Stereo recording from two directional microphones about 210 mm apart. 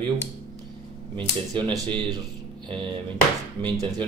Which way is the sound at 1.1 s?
25° right (ahead or behind).